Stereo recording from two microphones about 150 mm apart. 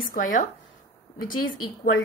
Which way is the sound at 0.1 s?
60° left (ahead or behind).